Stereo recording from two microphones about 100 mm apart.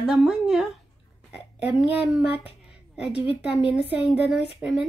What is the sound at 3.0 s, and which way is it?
Speech, 15° right (ahead or behind).